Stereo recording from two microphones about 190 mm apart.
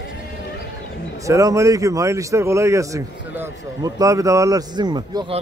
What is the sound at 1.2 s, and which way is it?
A man's voice, 15° right (ahead or behind).